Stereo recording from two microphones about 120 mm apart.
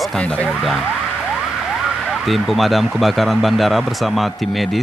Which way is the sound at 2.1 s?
Centre (ahead or behind).